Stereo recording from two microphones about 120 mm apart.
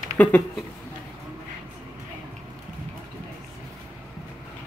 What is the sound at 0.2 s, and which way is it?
Speech, 15° left (ahead or behind).